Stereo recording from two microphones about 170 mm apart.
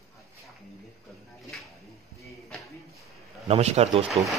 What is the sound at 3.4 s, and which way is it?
Speech, 40° right (ahead or behind).